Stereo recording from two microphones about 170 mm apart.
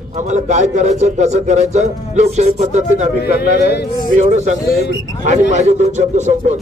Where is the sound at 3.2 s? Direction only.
75° left (ahead or behind).